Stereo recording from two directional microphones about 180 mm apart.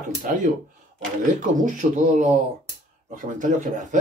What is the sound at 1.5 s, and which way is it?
Speech, 45° right (ahead or behind).